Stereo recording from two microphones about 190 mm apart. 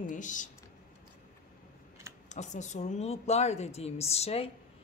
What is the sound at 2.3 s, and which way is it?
Music, 40° left (ahead or behind).